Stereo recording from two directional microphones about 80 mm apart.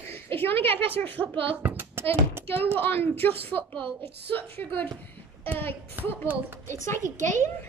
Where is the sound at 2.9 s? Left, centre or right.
Left.